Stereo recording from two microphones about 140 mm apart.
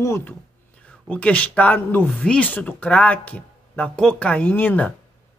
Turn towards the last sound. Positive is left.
turn(degrees=15)  # may be behind; listen again after turning